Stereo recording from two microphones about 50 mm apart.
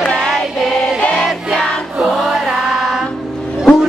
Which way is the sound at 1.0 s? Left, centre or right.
Left.